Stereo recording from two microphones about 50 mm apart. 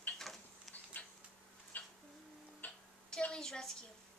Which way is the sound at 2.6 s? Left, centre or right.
Left.